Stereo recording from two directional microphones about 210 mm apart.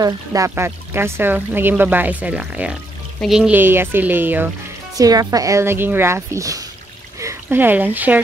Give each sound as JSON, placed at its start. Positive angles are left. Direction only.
{"t": 0.0, "sound": "speech", "side_deg": -15}